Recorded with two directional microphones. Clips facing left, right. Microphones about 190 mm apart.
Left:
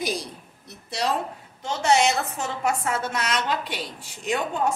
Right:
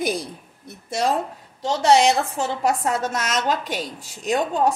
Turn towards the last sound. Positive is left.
turn(degrees=-40)  # may be behind; listen again after turning